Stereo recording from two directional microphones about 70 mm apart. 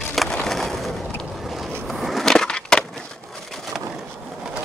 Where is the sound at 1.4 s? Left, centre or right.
Centre.